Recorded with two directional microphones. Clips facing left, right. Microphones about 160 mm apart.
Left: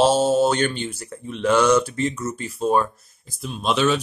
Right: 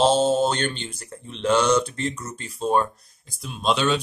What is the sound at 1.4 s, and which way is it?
Speech, 30° right (ahead or behind).